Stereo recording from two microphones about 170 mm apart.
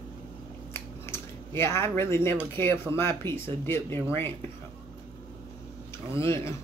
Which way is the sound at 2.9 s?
15° left (ahead or behind).